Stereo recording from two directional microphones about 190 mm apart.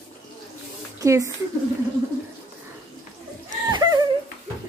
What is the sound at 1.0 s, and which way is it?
Speech, 15° right (ahead or behind).